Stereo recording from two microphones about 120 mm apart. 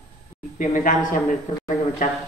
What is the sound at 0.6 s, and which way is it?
Speech, 90° left.